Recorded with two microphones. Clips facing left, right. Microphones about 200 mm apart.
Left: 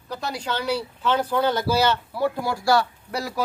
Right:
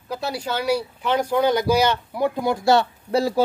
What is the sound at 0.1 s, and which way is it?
Speech, 10° right (ahead or behind).